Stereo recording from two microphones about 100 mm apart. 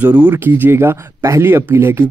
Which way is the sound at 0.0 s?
15° right (ahead or behind).